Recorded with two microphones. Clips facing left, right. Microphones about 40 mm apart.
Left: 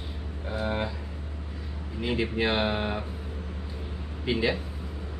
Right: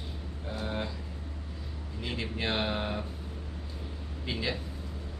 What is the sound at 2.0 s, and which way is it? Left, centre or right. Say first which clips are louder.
Speech: left 8 dB; centre.